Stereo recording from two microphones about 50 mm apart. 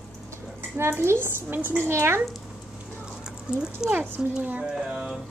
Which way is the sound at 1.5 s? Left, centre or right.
Right.